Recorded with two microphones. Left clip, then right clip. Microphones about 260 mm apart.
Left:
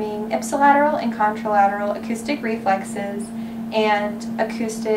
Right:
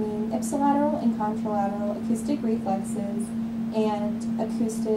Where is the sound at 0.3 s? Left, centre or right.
Centre.